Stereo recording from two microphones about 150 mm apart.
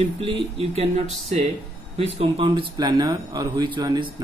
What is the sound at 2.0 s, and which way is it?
Speech, 40° right (ahead or behind).